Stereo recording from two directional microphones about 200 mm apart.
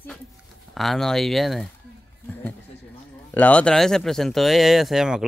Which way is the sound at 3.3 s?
5° left (ahead or behind).